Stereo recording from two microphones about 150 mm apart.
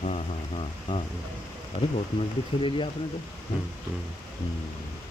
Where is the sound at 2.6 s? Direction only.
35° left (ahead or behind).